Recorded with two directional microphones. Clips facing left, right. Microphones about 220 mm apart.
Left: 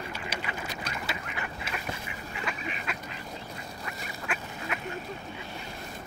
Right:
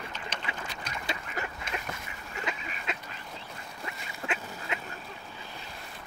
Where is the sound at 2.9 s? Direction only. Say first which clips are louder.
Even; 20° right (ahead or behind).